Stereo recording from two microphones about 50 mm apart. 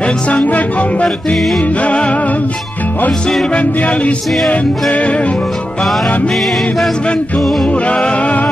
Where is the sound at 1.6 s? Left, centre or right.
Left.